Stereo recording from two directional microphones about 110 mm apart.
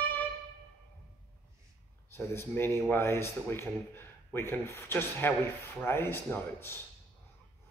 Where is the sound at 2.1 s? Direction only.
20° left (ahead or behind).